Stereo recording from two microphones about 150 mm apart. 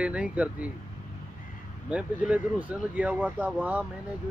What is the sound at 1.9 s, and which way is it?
Speech, 10° right (ahead or behind).